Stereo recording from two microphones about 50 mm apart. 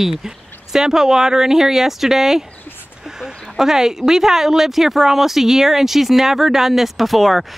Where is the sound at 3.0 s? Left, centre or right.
Centre.